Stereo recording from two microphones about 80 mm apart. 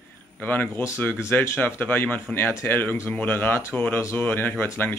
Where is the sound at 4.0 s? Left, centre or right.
Left.